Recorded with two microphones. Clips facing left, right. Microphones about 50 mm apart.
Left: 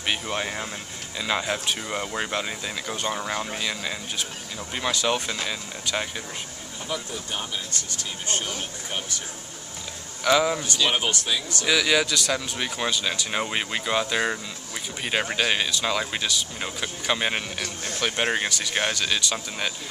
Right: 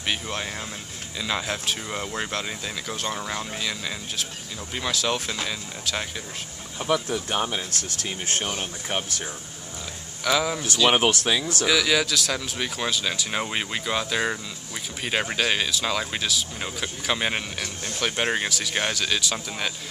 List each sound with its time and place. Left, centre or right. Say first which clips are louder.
0.0 s speech: left 1 dB; centre
6.9 s speech: right 7 dB; right
7.9 s speech: right 1 dB; right
8.5 s speech: right 3 dB; right
10.2 s speech: left 3 dB; centre
10.9 s speech: right 7 dB; right
11.6 s speech: left 1 dB; centre